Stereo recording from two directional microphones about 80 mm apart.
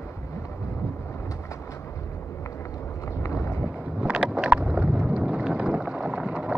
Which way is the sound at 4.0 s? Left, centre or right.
Centre.